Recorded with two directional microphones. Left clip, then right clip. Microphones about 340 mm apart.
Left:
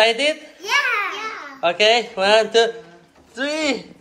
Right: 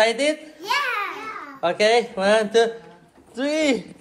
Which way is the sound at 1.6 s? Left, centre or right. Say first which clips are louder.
Left 2 dB; centre.